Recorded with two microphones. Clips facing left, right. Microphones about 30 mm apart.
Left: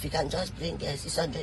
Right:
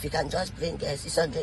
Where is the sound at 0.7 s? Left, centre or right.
Right.